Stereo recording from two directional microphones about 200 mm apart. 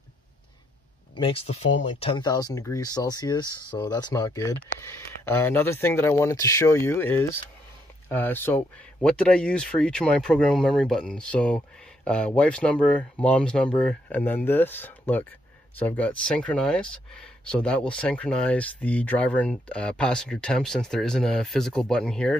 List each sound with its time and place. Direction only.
1.1 s speech: 25° left (ahead or behind); by 22.4 s 5° left (ahead or behind)